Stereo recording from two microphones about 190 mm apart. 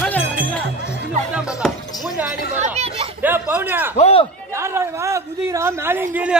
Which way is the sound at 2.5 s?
35° right (ahead or behind).